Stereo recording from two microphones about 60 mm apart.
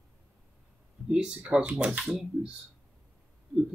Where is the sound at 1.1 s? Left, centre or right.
Centre.